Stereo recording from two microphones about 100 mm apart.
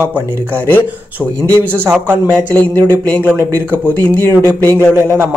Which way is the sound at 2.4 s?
15° left (ahead or behind).